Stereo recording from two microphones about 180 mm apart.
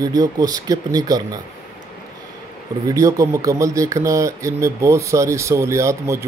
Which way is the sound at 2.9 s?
20° right (ahead or behind).